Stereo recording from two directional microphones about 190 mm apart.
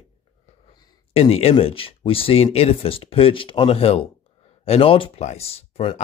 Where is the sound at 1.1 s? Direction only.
30° left (ahead or behind).